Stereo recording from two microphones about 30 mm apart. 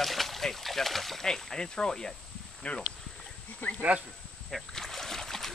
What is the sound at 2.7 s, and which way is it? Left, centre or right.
Speech, left.